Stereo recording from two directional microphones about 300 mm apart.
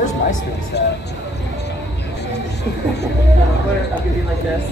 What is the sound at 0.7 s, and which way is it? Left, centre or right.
Speech, left.